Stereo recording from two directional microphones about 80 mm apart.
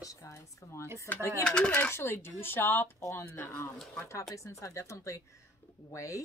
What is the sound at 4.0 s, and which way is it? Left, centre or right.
Speech, left.